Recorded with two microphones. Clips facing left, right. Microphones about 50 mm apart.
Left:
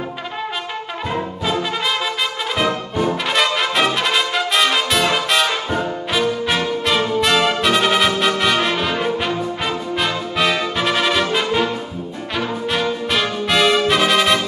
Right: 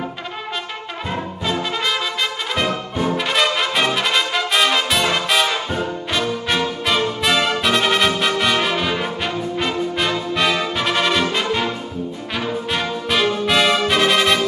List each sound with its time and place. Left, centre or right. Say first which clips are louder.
1.1 s brass instrument: left 2 dB; centre
3.3 s brass instrument: left 1 dB; centre
5.7 s music: left 2 dB; centre
12.4 s brass instrument: left 2 dB; centre